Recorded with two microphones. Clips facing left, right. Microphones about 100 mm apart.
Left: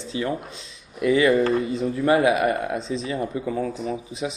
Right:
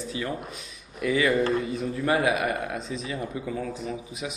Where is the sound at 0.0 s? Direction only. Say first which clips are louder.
Left 4 dB; 25° left (ahead or behind).